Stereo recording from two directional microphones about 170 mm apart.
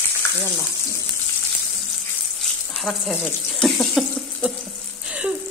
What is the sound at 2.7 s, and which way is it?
Speech, centre (ahead or behind).